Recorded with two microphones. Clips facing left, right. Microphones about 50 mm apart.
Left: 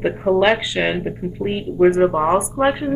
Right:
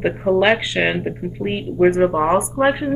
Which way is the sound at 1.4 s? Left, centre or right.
Right.